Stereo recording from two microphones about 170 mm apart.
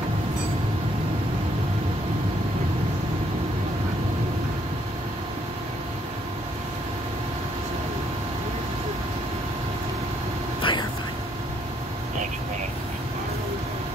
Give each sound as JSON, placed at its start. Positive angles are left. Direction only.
{"t": 10.6, "sound": "vehicle", "side_deg": 30}